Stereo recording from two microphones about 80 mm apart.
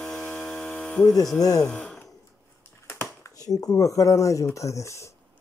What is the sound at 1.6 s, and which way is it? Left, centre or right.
Speech, centre.